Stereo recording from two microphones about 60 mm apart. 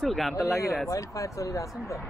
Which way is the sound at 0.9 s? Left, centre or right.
Left.